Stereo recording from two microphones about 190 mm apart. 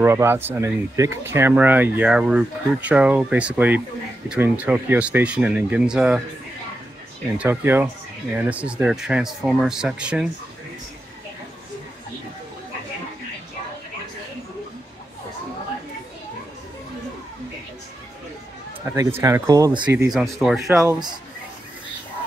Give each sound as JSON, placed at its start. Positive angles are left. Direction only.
{"t": 0.0, "sound": "speech", "side_deg": -15}
{"t": 7.3, "sound": "speech", "side_deg": -10}
{"t": 18.9, "sound": "speech", "side_deg": -10}
{"t": 20.1, "sound": "speech", "side_deg": 0}
{"t": 20.8, "sound": "speech", "side_deg": -15}